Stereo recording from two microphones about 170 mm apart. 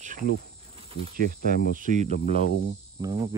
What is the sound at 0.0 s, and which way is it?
Speech, 55° right (ahead or behind).